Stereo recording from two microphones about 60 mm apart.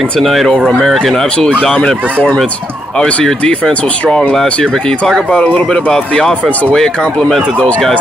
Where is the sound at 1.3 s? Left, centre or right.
Centre.